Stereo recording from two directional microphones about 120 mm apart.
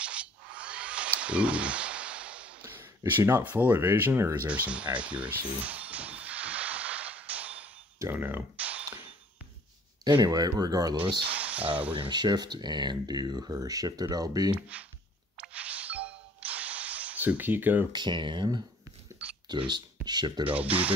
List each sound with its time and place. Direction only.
0.0 s a sound: 10° right (ahead or behind)
2.6 s speech: 20° right (ahead or behind)
4.5 s music: 10° right (ahead or behind)
8.0 s a sound: 20° right (ahead or behind)
10.0 s speech: 35° right (ahead or behind)
11.2 s speech: 10° right (ahead or behind)
11.9 s speech: 40° right (ahead or behind)
14.5 s speech: 10° right (ahead or behind)
15.3 s music: 10° right (ahead or behind)
17.9 s speech: 40° right (ahead or behind)
20.4 s speech: 15° right (ahead or behind)